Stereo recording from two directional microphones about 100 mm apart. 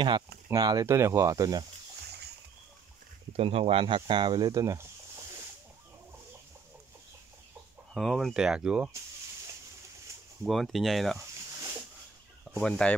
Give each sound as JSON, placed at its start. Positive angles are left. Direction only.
{"t": 0.5, "sound": "speech", "side_deg": -40}
{"t": 3.3, "sound": "speech", "side_deg": -75}
{"t": 3.8, "sound": "speech", "side_deg": -55}
{"t": 7.9, "sound": "speech", "side_deg": 0}
{"t": 10.4, "sound": "speech", "side_deg": 0}
{"t": 12.5, "sound": "speech", "side_deg": 10}